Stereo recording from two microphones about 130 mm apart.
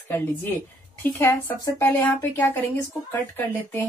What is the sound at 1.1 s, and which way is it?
A woman's voice, 15° left (ahead or behind).